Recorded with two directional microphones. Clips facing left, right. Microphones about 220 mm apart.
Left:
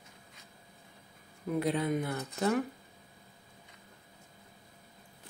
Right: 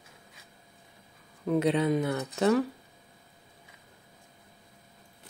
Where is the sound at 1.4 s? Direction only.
80° right.